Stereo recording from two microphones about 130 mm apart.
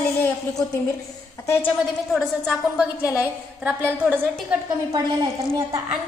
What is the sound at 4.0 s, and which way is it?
Speech, 15° right (ahead or behind).